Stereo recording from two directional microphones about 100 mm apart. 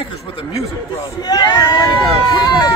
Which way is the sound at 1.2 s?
40° left (ahead or behind).